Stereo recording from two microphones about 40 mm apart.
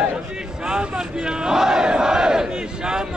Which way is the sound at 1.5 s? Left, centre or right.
Centre.